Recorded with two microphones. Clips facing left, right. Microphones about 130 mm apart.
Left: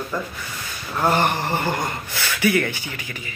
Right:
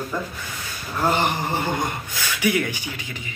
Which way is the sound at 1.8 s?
15° right (ahead or behind).